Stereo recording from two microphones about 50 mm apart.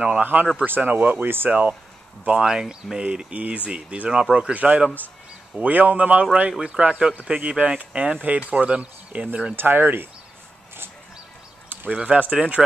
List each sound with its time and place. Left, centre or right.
0.0 s speech: right
2.4 s speech: centre
9.6 s speech: right
11.7 s a sound: right
12.0 s speech: right